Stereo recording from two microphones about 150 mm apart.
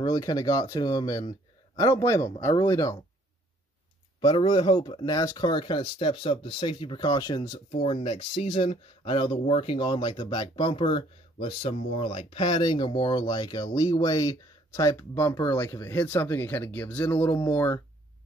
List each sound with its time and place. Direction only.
0.0 s speech: 25° left (ahead or behind)
4.2 s speech: 30° left (ahead or behind)
7.8 s speech: 40° left (ahead or behind); by 17.8 s 15° left (ahead or behind)